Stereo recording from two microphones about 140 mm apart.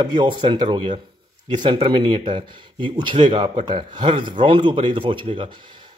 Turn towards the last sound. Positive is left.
turn(degrees=-35)  # may be behind; listen again after turning